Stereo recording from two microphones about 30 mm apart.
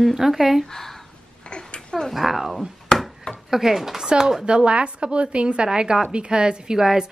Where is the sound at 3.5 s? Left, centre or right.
Centre.